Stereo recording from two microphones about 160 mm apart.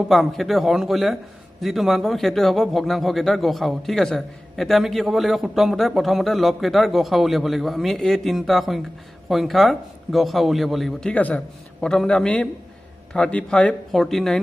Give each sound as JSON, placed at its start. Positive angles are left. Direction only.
{"t": 0.1, "sound": "speech", "side_deg": 0}